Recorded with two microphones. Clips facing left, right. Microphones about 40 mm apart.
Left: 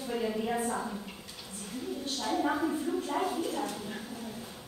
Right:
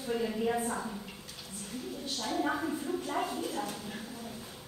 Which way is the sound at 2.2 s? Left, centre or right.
Centre.